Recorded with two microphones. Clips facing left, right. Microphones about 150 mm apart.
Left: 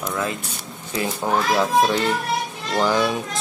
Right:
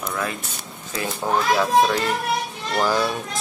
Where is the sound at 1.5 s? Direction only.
25° left (ahead or behind).